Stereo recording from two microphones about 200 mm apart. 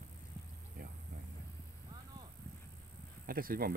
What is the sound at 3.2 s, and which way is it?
Speech, 45° right (ahead or behind).